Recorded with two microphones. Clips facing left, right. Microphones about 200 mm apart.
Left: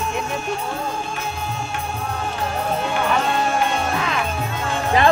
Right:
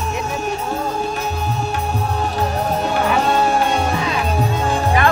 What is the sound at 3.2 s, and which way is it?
Music, 35° right (ahead or behind).